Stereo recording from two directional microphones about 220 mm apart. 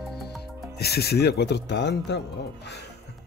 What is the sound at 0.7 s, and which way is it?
Speech, 45° left (ahead or behind).